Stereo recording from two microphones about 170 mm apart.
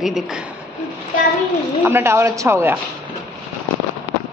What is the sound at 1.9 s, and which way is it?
Speech, 15° right (ahead or behind).